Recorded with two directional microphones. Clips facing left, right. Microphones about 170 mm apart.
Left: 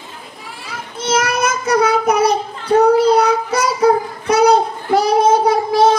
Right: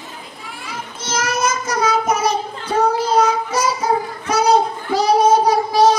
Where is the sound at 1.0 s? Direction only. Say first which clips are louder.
Left 4 dB; 60° left (ahead or behind).